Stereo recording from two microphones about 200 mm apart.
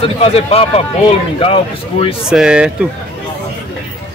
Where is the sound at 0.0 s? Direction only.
30° left (ahead or behind).